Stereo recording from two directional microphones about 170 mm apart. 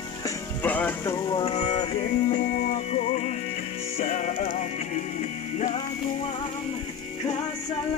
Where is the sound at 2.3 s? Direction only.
50° left (ahead or behind).